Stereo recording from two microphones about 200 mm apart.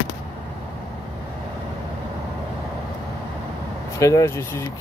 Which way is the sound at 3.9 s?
15° left (ahead or behind).